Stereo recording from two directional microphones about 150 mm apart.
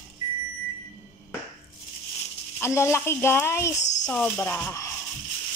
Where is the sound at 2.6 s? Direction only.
15° left (ahead or behind).